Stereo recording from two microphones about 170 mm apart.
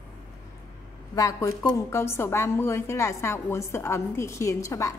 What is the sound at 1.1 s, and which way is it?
A woman's voice, 20° left (ahead or behind).